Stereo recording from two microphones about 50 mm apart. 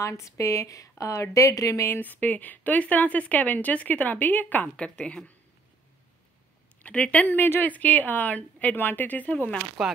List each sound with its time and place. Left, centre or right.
0.0 s a woman's voice: left
2.0 s speech: left
4.7 s speech: left
6.9 s speech: left
7.2 s speech: left
7.6 s speech: left
9.8 s speech: centre